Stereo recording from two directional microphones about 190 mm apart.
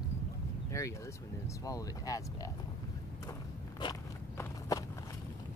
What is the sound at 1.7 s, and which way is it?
Speech, 20° left (ahead or behind).